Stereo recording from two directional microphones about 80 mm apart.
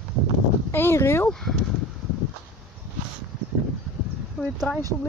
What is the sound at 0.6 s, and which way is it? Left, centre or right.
Speech, left.